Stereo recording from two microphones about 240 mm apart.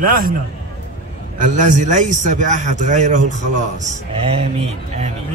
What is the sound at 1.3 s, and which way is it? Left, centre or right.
A man's voice, right.